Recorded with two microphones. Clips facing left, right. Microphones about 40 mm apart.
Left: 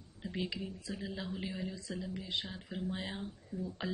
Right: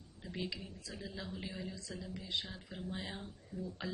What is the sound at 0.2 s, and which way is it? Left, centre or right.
A woman's voice, centre.